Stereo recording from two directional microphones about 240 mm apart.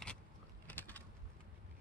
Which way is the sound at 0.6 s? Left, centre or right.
Centre.